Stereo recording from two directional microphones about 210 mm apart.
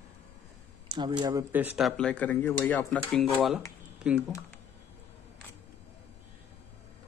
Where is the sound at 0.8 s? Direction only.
20° right (ahead or behind).